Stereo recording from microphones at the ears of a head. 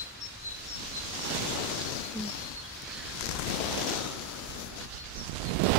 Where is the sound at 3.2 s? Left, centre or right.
Left.